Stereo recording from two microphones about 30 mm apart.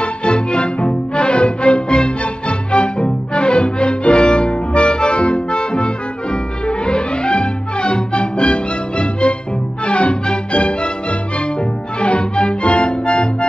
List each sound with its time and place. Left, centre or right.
0.0 s music: left
12.0 s accordion: left